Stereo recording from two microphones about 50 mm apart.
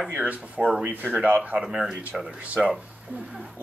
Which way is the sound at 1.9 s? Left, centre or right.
Right.